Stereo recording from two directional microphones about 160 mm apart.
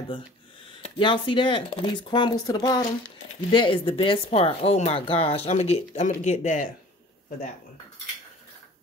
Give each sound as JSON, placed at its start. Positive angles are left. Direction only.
{"t": 0.8, "sound": "speech", "side_deg": 30}